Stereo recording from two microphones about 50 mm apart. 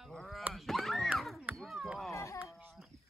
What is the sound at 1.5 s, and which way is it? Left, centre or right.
Chop, centre.